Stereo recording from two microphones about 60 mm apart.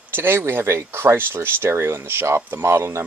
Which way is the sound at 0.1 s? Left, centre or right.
Right.